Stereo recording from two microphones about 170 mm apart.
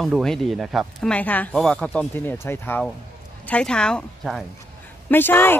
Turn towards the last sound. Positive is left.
turn(degrees=10)  # may be behind; listen again after turning